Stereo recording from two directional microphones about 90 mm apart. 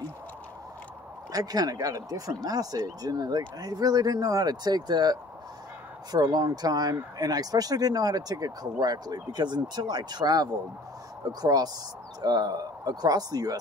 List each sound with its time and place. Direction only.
1.3 s speech: 45° right (ahead or behind)